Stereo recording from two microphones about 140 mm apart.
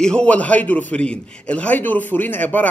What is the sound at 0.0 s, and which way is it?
Speech, 5° left (ahead or behind).